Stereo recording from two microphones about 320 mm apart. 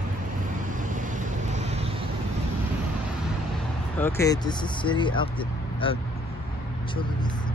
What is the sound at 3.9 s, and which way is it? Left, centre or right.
Speech, centre.